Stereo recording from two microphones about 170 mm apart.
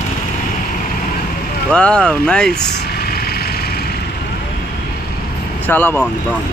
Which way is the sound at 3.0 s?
65° left (ahead or behind).